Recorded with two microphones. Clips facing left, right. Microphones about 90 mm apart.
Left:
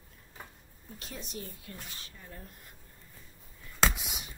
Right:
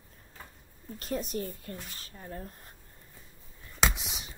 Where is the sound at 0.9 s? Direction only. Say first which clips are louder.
Right 10 dB; 45° right (ahead or behind).